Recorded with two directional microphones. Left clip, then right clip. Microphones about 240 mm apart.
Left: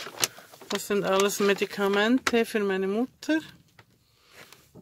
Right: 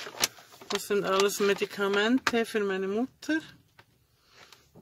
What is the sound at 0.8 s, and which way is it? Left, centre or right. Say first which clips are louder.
Speech: left 2 dB; centre.